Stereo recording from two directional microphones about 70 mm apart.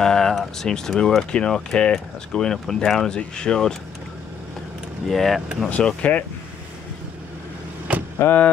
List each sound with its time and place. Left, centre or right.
0.0 s speech: centre
5.0 s speech: centre
5.7 s speech: centre